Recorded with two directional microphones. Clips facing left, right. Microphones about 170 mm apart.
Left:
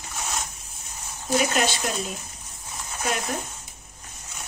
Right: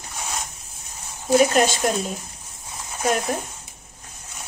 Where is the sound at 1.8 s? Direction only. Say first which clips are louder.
Right 7 dB; 45° right (ahead or behind).